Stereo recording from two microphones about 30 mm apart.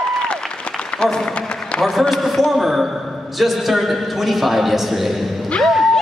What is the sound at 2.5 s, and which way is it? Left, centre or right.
A man's voice, centre.